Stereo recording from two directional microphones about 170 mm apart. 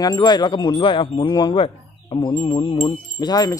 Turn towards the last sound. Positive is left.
turn(degrees=20)  # may be behind; listen again after turning